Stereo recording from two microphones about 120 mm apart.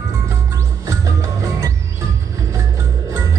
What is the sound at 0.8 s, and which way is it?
Music, 25° right (ahead or behind).